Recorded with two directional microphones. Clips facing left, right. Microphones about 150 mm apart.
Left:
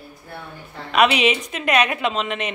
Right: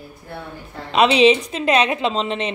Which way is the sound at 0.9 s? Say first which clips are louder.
Right 4 dB; 30° right (ahead or behind).